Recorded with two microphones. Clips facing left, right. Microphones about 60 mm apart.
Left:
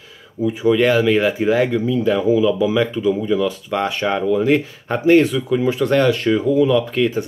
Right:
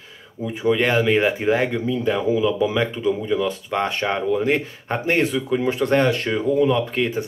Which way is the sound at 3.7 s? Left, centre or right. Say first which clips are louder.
Left 2 dB; centre.